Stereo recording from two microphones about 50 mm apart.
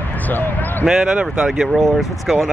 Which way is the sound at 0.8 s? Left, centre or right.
Centre.